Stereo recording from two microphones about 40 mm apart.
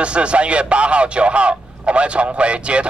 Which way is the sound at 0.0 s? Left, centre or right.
Right.